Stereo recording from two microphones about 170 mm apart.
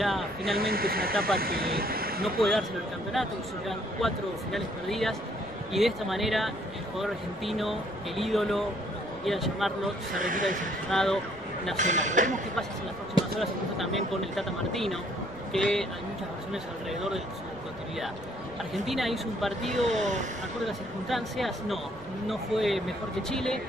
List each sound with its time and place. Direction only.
0.6 s speech: 60° right (ahead or behind)
2.2 s speech: centre (ahead or behind)
10.2 s speech: 50° right (ahead or behind)
10.9 s speech: centre (ahead or behind)
11.7 s speech: 45° right (ahead or behind)
13.4 s speech: centre (ahead or behind)
18.9 s speech: centre (ahead or behind)
19.8 s speech: 45° right (ahead or behind)
20.6 s speech: centre (ahead or behind)